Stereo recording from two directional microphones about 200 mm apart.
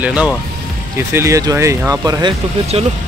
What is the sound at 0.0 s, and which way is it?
Speech, 5° right (ahead or behind).